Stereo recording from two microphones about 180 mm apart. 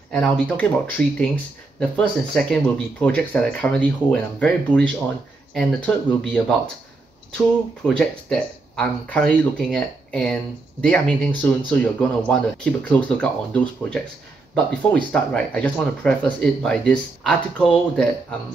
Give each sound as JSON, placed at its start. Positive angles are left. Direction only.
{"t": 0.1, "sound": "speech", "side_deg": 5}
{"t": 7.3, "sound": "speech", "side_deg": 5}